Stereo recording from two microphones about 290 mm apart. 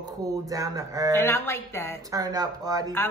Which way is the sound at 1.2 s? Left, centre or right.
Centre.